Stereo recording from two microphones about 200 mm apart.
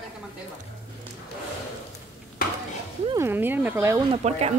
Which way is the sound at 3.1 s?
10° right (ahead or behind).